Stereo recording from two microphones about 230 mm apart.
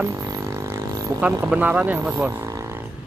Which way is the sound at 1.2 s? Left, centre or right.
Centre.